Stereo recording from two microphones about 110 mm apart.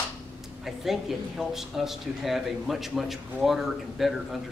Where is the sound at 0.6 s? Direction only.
Centre (ahead or behind).